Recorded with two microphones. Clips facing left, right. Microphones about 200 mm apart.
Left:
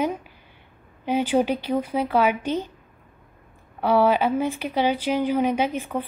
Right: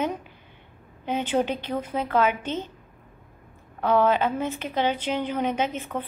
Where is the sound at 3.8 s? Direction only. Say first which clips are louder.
Left 2 dB; 10° left (ahead or behind).